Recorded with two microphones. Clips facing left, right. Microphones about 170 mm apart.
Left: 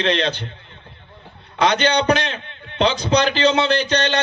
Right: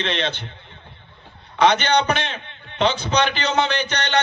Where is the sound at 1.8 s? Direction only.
35° left (ahead or behind).